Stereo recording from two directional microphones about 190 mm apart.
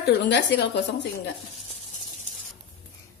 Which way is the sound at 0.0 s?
65° left (ahead or behind).